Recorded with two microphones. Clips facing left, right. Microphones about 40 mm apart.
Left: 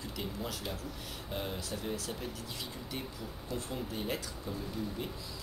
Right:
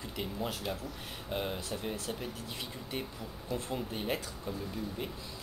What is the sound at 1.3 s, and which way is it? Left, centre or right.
Speech, centre.